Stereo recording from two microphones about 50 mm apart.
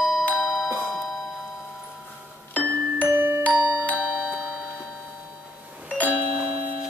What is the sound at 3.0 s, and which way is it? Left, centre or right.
Glockenspiel, right.